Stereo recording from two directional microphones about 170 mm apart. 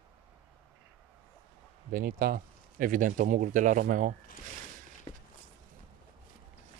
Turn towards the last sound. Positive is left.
turn(degrees=30)  # may be behind; listen again after turning